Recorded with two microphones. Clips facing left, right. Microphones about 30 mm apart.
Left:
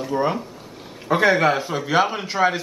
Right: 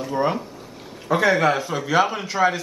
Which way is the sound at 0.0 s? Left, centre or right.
Centre.